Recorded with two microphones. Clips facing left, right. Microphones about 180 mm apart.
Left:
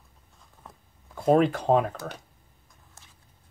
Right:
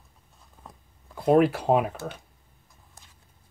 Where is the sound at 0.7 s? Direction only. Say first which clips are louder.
Right 1 dB; centre (ahead or behind).